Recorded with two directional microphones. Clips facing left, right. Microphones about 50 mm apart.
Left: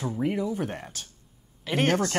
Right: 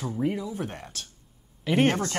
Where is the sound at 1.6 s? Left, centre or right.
Centre.